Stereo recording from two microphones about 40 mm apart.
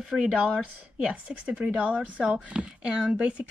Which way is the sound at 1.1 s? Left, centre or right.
Right.